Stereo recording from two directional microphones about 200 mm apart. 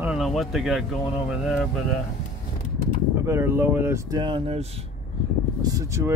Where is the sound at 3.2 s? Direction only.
15° right (ahead or behind).